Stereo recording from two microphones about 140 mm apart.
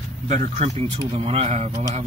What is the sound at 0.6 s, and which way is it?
Speech, 40° right (ahead or behind).